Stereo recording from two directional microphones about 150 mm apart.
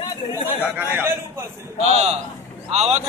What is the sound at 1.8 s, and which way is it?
A man's voice, 45° right (ahead or behind).